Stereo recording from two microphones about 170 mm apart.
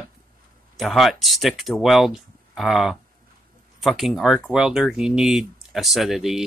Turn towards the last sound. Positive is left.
turn(degrees=0)  # may be behind; listen again after turning